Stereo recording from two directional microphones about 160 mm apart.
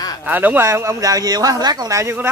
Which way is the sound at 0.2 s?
10° right (ahead or behind).